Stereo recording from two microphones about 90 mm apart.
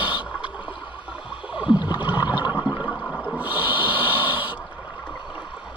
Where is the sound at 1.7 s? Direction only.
60° left (ahead or behind).